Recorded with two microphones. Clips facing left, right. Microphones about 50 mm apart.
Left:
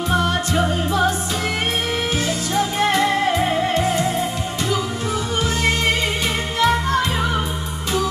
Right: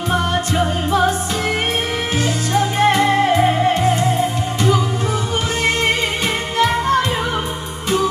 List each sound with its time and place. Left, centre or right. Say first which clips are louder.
0.1 s music: right 1 dB; right
2.2 s music: right 3 dB; right
6.6 s music: right 2 dB; right